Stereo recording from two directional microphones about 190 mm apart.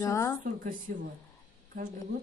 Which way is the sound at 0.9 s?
45° right (ahead or behind).